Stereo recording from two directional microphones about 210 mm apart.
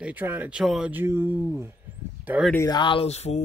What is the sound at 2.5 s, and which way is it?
Speech, 15° left (ahead or behind).